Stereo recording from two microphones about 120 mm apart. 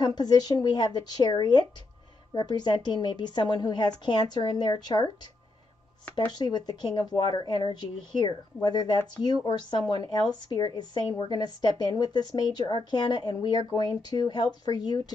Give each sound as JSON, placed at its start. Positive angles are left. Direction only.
{"t": 0.0, "sound": "speech", "side_deg": 35}
{"t": 6.1, "sound": "speech", "side_deg": 35}